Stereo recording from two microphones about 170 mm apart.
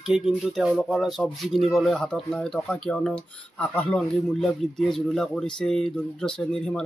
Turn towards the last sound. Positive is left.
turn(degrees=5)  # may be behind; listen again after turning